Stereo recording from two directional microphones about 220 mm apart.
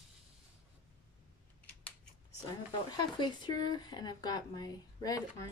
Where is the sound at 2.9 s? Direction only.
20° left (ahead or behind).